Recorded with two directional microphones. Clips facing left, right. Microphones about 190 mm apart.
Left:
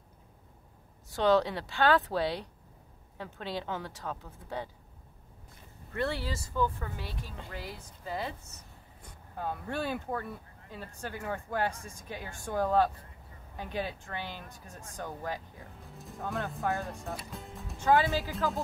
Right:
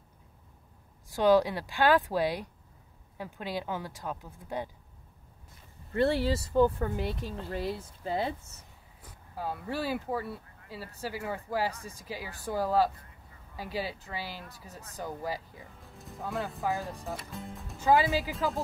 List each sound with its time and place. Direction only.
1.0 s speech: 10° right (ahead or behind)
5.9 s speech: 25° right (ahead or behind)
9.0 s speech: 5° right (ahead or behind)
17.8 s speech: 10° right (ahead or behind)